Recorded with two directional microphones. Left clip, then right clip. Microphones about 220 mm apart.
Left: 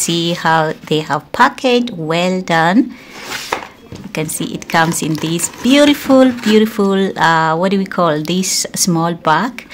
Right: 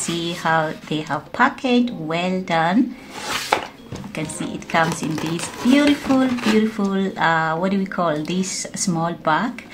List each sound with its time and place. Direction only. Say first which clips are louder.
0.0 s speech: left 7 dB; 50° left (ahead or behind)
4.1 s speech: left 7 dB; 50° left (ahead or behind)